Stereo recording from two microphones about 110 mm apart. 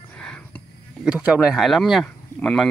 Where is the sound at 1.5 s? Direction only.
Centre (ahead or behind).